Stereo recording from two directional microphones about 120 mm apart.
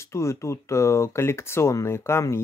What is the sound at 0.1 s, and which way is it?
Speech, 25° left (ahead or behind).